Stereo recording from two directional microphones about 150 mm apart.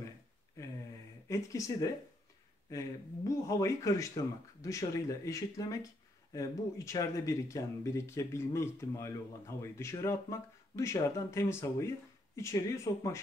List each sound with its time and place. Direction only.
1.3 s speech: 20° left (ahead or behind)
3.3 s speech: 20° left (ahead or behind)